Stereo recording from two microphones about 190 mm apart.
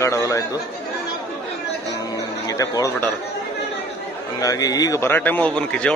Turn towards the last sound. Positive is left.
turn(degrees=5)  # may be behind; listen again after turning